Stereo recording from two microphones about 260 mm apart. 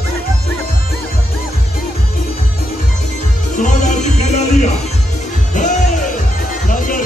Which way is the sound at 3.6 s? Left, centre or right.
Left.